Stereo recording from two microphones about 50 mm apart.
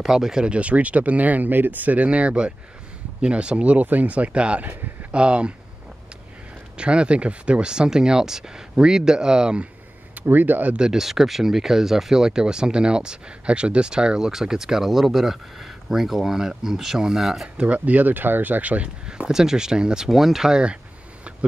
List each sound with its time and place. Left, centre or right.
0.0 s speech: centre
6.8 s speech: right
10.1 s speech: right
10.8 s speech: centre
17.6 s speech: right
19.0 s speech: centre
20.1 s speech: centre